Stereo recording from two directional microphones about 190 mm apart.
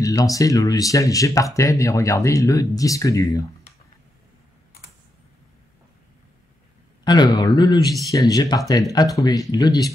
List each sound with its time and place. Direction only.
0.0 s speech: 20° left (ahead or behind)
7.1 s speech: 20° left (ahead or behind)